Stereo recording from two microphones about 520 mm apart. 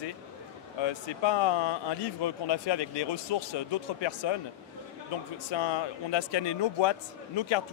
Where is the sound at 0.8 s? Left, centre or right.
Left.